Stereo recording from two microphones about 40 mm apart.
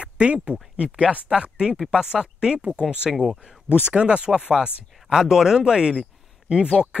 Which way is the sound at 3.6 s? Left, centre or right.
Right.